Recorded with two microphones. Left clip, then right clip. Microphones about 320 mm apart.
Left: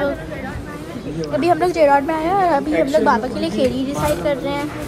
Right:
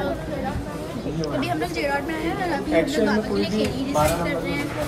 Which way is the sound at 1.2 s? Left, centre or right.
Centre.